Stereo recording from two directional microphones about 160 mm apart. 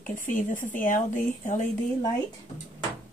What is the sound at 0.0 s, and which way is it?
Speech, 55° left (ahead or behind).